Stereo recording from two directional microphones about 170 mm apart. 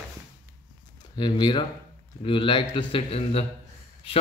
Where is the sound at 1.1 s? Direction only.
30° left (ahead or behind).